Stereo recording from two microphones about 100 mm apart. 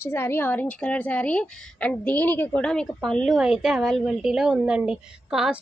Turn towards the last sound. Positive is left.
turn(degrees=-5)  # may be behind; listen again after turning